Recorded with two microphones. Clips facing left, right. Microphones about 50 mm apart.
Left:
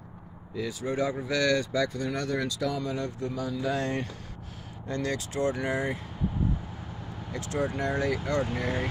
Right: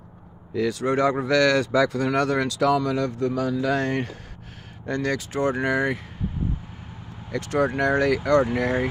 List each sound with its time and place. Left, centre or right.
0.6 s speech: right
3.8 s speech: right
7.3 s speech: right